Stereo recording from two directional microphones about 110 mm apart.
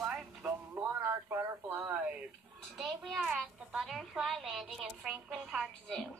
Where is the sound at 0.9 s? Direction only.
25° right (ahead or behind).